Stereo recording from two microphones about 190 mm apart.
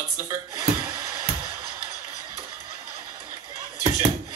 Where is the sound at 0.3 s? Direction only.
20° right (ahead or behind).